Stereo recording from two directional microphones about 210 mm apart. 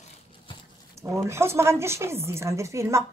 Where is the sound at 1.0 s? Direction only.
10° right (ahead or behind).